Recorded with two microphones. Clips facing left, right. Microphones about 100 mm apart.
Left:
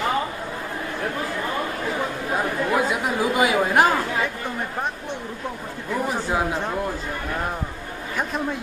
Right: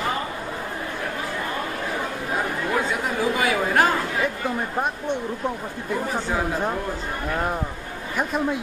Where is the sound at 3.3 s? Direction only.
15° left (ahead or behind).